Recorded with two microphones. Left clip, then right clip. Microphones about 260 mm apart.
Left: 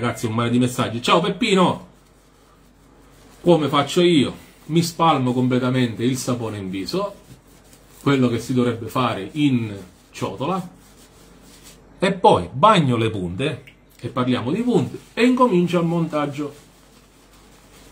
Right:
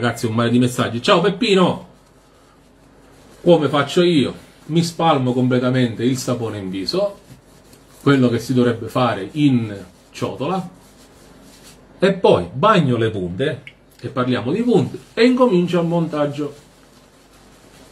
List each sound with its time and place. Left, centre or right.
0.0 s speech: centre
3.4 s speech: centre
8.0 s speech: centre
10.1 s speech: centre
12.0 s speech: centre